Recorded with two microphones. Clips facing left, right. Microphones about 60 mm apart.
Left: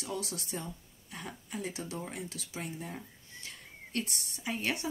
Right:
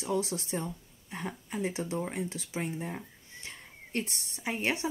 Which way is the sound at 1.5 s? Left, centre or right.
Right.